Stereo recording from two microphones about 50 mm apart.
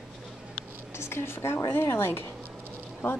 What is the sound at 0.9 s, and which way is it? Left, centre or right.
A woman's voice, left.